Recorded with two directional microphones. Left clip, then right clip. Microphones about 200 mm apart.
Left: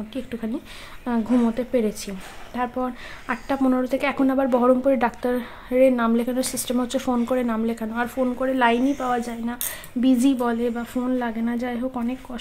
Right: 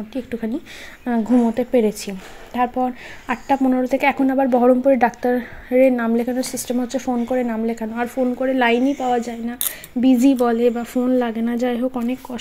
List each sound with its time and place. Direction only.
0.1 s a woman's voice: 10° right (ahead or behind)